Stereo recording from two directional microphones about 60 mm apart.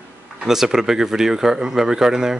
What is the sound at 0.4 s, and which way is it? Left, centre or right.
Speech, centre.